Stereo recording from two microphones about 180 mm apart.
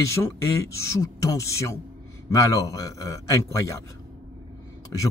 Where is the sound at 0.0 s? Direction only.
15° left (ahead or behind).